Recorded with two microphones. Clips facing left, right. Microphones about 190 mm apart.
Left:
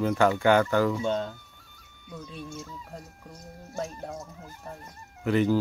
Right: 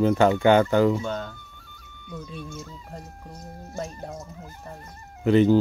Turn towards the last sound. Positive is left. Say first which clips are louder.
# right 6 dB
turn(degrees=-25)  # may be behind; listen again after turning